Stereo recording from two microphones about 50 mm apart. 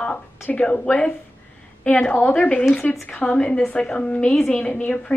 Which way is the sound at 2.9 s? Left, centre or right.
Left.